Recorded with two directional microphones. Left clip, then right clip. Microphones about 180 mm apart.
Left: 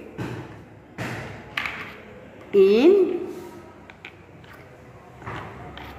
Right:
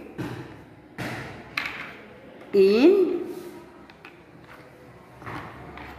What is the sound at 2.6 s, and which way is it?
Speech, 15° right (ahead or behind).